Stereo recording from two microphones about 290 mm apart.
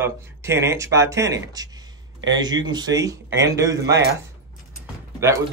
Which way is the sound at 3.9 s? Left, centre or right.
Right.